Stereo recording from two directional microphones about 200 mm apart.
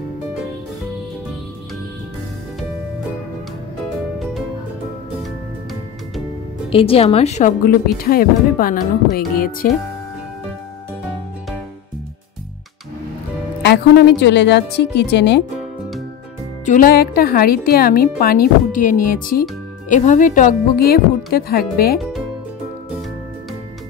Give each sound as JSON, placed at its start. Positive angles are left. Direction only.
{"t": 6.7, "sound": "a woman's voice", "side_deg": 30}
{"t": 13.6, "sound": "a woman's voice", "side_deg": 55}
{"t": 16.6, "sound": "a woman's voice", "side_deg": 45}